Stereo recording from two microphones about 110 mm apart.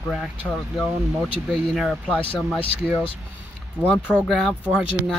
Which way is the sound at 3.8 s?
15° left (ahead or behind).